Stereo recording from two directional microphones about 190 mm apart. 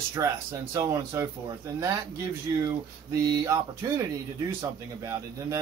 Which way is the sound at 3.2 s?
20° right (ahead or behind).